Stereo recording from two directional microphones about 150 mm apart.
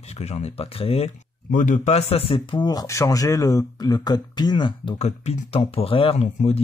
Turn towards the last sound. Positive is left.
turn(degrees=45)  # may be behind; listen again after turning